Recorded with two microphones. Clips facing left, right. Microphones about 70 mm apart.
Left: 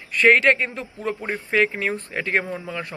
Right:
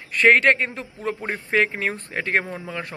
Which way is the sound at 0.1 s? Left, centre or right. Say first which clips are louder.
Even; right.